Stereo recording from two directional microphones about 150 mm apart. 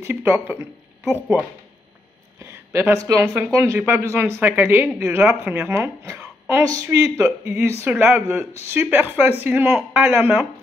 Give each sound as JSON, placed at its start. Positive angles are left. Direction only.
{"t": 0.0, "sound": "a woman's voice", "side_deg": -15}
{"t": 2.4, "sound": "a sound", "side_deg": -15}
{"t": 3.1, "sound": "a woman's voice", "side_deg": -15}